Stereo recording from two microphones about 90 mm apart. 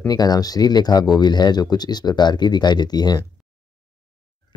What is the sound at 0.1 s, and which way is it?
Speech, 45° left (ahead or behind).